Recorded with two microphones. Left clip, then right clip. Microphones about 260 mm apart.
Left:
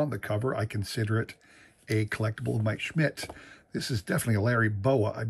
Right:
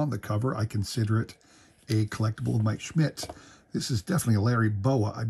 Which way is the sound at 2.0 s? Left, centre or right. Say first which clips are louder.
Left 1 dB; centre.